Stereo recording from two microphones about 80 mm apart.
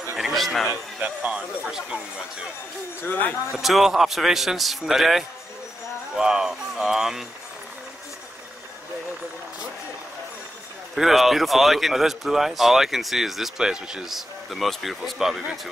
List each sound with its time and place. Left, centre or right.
0.2 s speech: centre
1.0 s speech: centre
3.0 s speech: left
3.5 s speech: centre
11.0 s speech: centre